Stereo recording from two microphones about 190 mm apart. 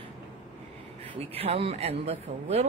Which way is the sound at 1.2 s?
30° right (ahead or behind).